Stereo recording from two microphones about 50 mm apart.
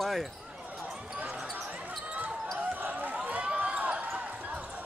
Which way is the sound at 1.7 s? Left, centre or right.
Right.